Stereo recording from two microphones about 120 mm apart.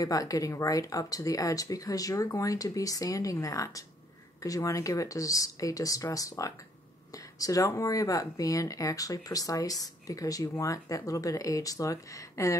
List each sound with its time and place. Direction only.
0.0 s speech: 30° left (ahead or behind)